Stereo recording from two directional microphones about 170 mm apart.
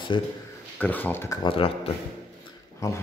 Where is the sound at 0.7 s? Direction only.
10° left (ahead or behind).